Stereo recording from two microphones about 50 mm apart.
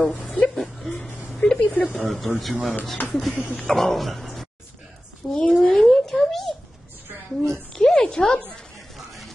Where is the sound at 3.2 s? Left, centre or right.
Centre.